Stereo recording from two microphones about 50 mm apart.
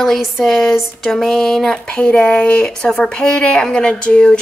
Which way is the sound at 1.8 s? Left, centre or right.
Centre.